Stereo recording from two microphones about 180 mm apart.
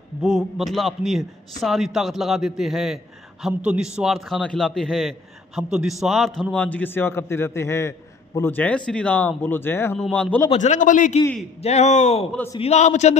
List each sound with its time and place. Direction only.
0.2 s a man's voice: 5° right (ahead or behind)
10.5 s a man's voice: 40° left (ahead or behind)